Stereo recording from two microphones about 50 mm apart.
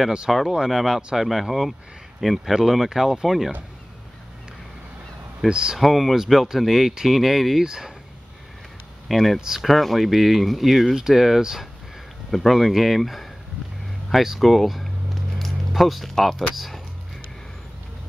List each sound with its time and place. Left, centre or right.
0.3 s speech: centre
5.5 s speech: centre
5.8 s speech: centre
9.1 s speech: centre
15.3 s music: centre
16.5 s speech: centre